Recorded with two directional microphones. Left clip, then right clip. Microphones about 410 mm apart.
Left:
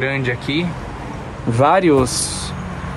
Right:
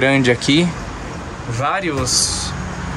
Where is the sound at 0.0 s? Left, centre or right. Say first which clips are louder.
Right 6 dB; centre.